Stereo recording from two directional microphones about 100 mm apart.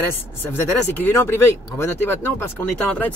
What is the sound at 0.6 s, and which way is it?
Speech, 20° left (ahead or behind).